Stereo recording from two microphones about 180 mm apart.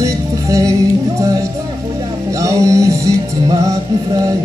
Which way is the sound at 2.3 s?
20° right (ahead or behind).